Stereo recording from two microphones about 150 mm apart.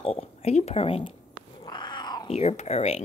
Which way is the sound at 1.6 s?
30° left (ahead or behind).